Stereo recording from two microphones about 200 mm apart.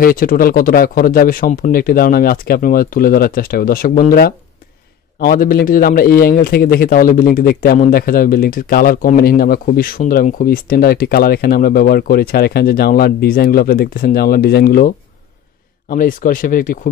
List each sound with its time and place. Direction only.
0.0 s speech: 45° left (ahead or behind)